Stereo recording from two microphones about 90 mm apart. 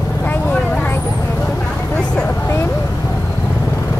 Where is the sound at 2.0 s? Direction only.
15° left (ahead or behind).